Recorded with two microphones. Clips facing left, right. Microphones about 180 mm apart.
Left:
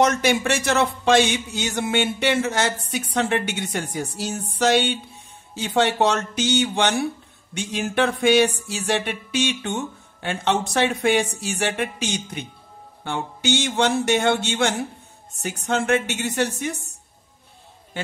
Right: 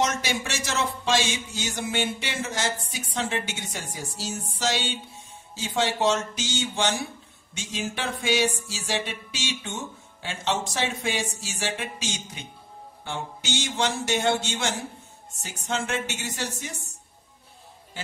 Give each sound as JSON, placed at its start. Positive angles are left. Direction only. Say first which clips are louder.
{"t": 0.0, "sound": "speech", "louder": "left 8 dB", "side_deg": 60}